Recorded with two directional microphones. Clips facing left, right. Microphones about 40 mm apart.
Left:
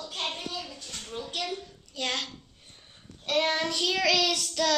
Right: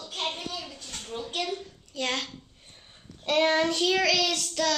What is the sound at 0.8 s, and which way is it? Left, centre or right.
A woman's voice, centre.